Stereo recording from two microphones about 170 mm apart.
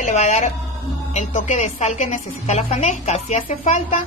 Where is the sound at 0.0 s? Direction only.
45° left (ahead or behind).